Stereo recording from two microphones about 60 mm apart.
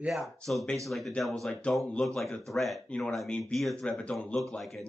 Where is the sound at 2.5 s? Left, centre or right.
Centre.